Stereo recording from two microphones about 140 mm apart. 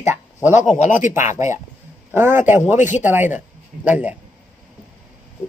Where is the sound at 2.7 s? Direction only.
60° left (ahead or behind).